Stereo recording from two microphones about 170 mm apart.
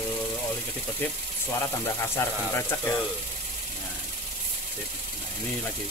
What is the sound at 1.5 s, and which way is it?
Speech, 15° left (ahead or behind).